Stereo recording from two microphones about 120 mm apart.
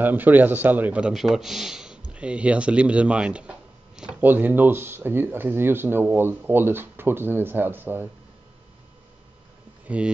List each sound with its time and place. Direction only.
0.0 s a man's voice: 15° right (ahead or behind)
9.8 s speech: 10° right (ahead or behind)